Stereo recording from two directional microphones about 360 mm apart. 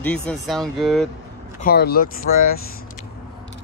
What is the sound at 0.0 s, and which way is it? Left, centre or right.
Speech, centre.